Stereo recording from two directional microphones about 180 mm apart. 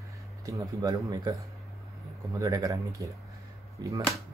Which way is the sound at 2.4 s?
20° right (ahead or behind).